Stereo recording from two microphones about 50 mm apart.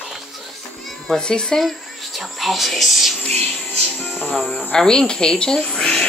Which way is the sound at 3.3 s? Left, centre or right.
Left.